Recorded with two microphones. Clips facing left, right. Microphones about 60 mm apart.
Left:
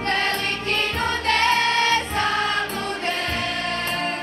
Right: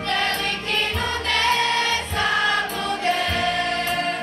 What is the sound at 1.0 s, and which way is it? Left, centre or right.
Music, left.